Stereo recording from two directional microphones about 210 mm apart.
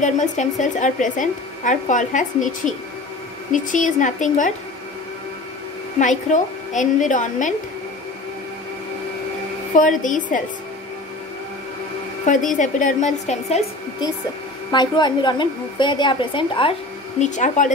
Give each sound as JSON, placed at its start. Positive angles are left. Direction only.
{"t": 0.0, "sound": "a woman's voice", "side_deg": 35}
{"t": 5.9, "sound": "a woman's voice", "side_deg": 35}
{"t": 9.8, "sound": "a woman's voice", "side_deg": 40}
{"t": 12.5, "sound": "a woman's voice", "side_deg": 35}
{"t": 14.7, "sound": "a woman's voice", "side_deg": 20}
{"t": 17.2, "sound": "a woman's voice", "side_deg": 35}